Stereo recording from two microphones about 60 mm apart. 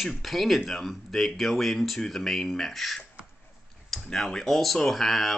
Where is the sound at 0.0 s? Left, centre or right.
Centre.